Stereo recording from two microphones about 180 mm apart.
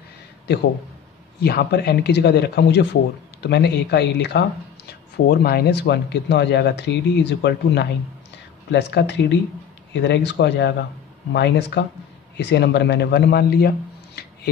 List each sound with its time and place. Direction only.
1.4 s speech: 60° left (ahead or behind)